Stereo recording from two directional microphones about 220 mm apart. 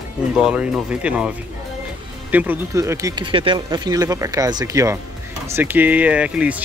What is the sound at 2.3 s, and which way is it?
Speech, 10° right (ahead or behind).